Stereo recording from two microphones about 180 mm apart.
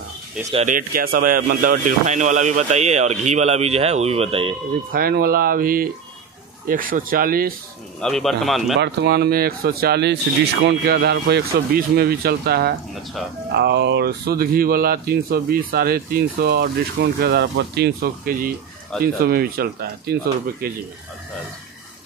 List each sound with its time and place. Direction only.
0.4 s speech: 40° right (ahead or behind)
4.9 s speech: 55° right (ahead or behind)
8.0 s speech: centre (ahead or behind)
8.7 s speech: 70° right (ahead or behind)
18.9 s speech: 5° left (ahead or behind)
19.2 s speech: 55° right (ahead or behind)